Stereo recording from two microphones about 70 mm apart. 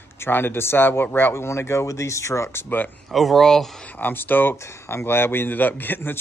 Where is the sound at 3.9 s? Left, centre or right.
Left.